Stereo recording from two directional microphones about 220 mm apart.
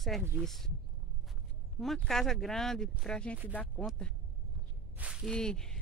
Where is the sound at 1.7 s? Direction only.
Centre (ahead or behind).